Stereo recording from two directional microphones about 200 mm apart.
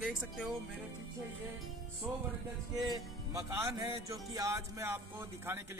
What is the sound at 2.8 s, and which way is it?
Music, 15° right (ahead or behind).